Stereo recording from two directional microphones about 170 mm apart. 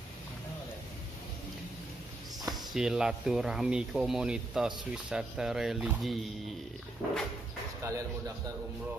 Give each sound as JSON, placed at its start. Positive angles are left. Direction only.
{"t": 2.5, "sound": "speech", "side_deg": -5}
{"t": 7.8, "sound": "speech", "side_deg": -15}